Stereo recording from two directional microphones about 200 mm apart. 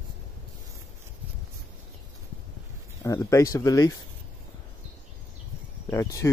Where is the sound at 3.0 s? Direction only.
15° left (ahead or behind).